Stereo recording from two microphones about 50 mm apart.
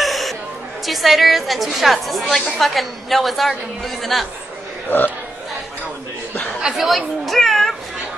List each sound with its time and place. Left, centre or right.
0.0 s chatter: centre
0.8 s a woman's voice: centre
4.8 s speech: left
6.6 s speech: centre